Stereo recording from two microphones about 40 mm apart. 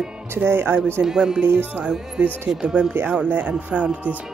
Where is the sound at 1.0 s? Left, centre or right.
Centre.